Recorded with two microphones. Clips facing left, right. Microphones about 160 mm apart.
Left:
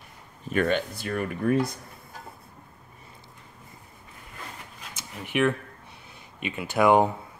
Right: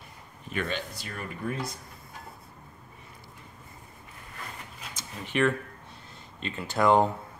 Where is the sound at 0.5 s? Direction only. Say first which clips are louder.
Left 8 dB; 50° left (ahead or behind).